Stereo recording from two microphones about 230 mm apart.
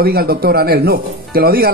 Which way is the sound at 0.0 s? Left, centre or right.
Right.